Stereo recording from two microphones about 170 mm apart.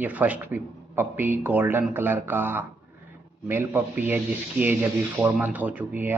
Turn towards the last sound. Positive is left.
turn(degrees=-10)  # may be behind; listen again after turning